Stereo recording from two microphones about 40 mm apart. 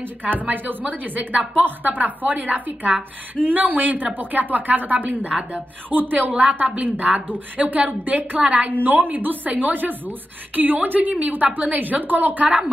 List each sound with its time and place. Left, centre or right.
0.2 s a woman's voice: right